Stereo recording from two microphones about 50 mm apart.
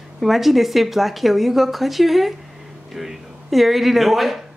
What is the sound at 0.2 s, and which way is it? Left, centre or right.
A man's voice, centre.